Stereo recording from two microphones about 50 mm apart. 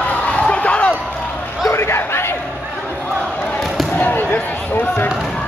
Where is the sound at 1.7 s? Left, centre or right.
Left.